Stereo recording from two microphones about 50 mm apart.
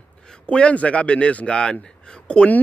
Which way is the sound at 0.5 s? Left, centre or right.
Left.